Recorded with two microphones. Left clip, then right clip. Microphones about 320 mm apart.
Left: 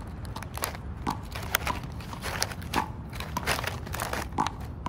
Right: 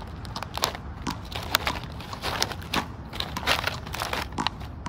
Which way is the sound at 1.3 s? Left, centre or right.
Centre.